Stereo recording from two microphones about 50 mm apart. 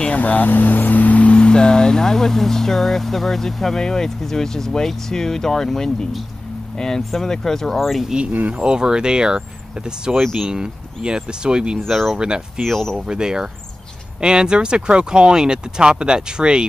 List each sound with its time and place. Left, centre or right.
0.0 s speech: left; by 8.1 s centre
8.3 s speech: right
8.5 s speech: centre
10.1 s speech: centre
11.9 s speech: centre
12.2 s speech: centre
12.6 s speech: centre
12.9 s speech: centre